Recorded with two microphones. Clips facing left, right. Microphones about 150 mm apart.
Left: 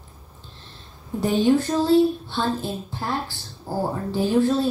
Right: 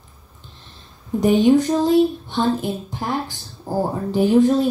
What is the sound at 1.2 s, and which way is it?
Speech, 15° right (ahead or behind).